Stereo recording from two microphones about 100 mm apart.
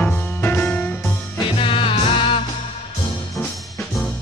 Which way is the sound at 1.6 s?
60° left (ahead or behind).